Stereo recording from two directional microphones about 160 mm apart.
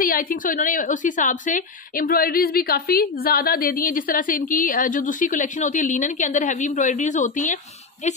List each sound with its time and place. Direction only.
0.0 s a woman's voice: 60° left (ahead or behind)